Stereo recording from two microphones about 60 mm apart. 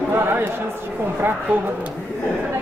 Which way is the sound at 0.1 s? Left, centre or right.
Right.